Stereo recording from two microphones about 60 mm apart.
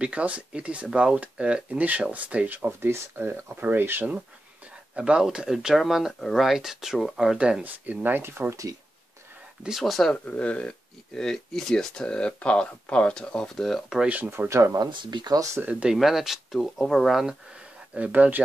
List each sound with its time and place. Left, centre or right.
0.0 s speech: right
4.9 s speech: centre
7.6 s speech: right
8.2 s speech: right
9.6 s speech: centre
10.1 s speech: left
11.1 s speech: centre
14.0 s speech: right
14.5 s speech: right
15.7 s speech: centre
16.0 s speech: centre
17.9 s speech: right